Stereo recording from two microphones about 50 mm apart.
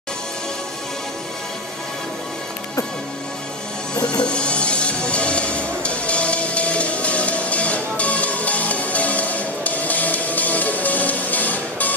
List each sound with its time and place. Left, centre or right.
3.9 s music: left